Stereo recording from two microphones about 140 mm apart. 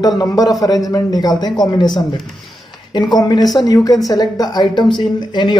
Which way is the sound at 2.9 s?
30° left (ahead or behind).